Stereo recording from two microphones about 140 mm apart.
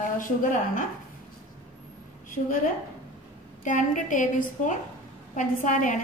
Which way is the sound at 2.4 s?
65° left (ahead or behind).